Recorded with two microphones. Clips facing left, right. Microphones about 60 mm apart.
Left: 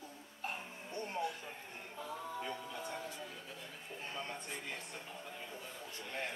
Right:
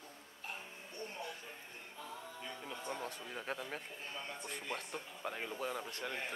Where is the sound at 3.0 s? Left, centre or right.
Right.